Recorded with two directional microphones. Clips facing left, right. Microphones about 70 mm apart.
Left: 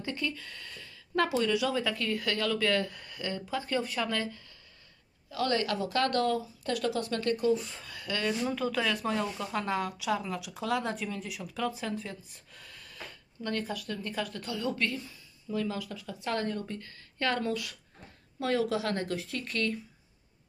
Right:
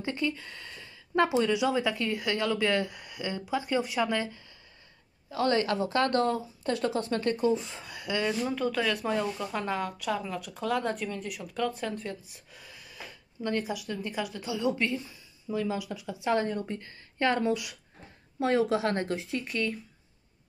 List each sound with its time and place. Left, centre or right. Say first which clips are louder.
0.0 s speech: right 4 dB; right
5.3 s speech: right 3 dB; right
8.5 s speech: right 2 dB; centre